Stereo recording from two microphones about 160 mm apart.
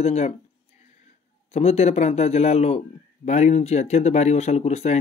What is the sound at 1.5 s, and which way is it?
A man's voice, 40° left (ahead or behind).